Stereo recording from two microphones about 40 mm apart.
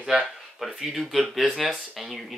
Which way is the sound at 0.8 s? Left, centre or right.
Centre.